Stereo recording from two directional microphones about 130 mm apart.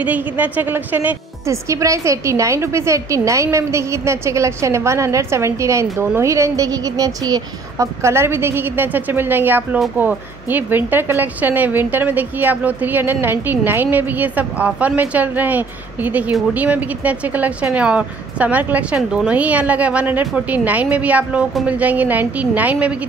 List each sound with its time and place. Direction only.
0.0 s a woman's voice: 15° right (ahead or behind)